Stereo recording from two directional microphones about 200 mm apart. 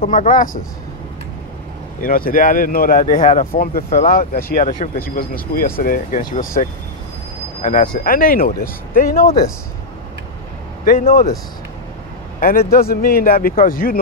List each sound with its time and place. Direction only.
0.1 s speech: 40° left (ahead or behind)
2.0 s speech: 45° left (ahead or behind)
7.9 s speech: 45° left (ahead or behind)
10.9 s speech: 45° left (ahead or behind)
12.4 s speech: 50° left (ahead or behind)